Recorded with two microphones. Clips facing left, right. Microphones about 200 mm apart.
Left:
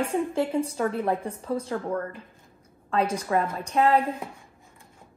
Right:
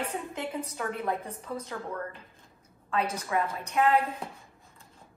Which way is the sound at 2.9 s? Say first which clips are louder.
Left 5 dB; 30° left (ahead or behind).